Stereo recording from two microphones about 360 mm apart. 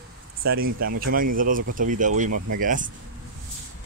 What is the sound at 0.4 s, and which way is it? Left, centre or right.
Speech, right.